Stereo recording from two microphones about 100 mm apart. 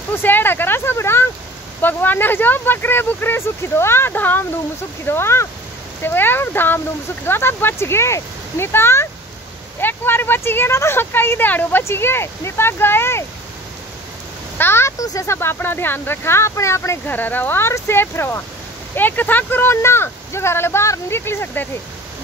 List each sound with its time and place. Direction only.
0.1 s speech: 20° left (ahead or behind)
14.6 s speech: 25° left (ahead or behind)